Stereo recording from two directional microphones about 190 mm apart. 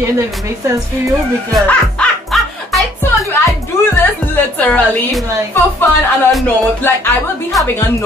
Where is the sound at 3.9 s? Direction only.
10° left (ahead or behind).